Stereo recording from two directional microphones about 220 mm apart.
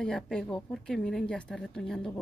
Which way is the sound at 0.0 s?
5° left (ahead or behind).